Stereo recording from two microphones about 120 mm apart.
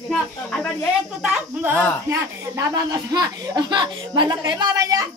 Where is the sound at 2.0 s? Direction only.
25° right (ahead or behind).